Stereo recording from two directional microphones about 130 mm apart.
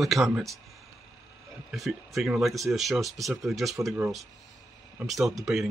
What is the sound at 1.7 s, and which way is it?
Speech, centre (ahead or behind).